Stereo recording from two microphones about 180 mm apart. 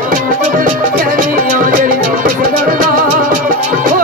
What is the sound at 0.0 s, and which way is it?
Music, 50° right (ahead or behind).